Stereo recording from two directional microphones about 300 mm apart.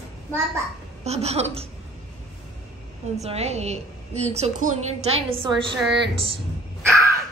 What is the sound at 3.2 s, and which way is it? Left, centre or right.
A woman's voice, right.